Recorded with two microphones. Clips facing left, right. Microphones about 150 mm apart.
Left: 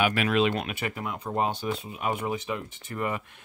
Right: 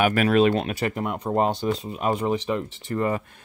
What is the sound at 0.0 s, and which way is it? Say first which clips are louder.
Speech: right 5 dB; 45° right (ahead or behind).